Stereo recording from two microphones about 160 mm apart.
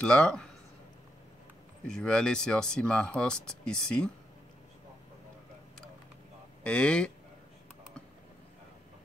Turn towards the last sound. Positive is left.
turn(degrees=5)  # may be behind; listen again after turning